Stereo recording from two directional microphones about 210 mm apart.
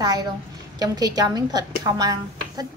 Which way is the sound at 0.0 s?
20° right (ahead or behind).